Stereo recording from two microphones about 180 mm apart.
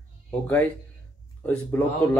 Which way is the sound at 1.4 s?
10° left (ahead or behind).